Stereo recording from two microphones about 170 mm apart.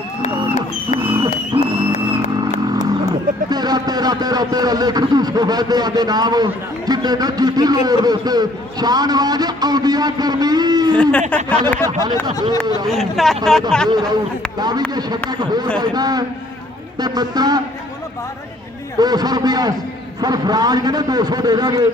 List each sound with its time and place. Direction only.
1.0 s a sound: 30° right (ahead or behind)
3.4 s speech: 25° right (ahead or behind)
11.0 s speech: 5° left (ahead or behind)
11.8 s a man's voice: 25° right (ahead or behind)
12.8 s speech: centre (ahead or behind)
15.2 s a man's voice: 25° right (ahead or behind)
18.9 s a man's voice: 25° right (ahead or behind)